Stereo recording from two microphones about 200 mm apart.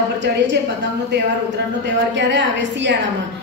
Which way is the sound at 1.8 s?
60° right (ahead or behind).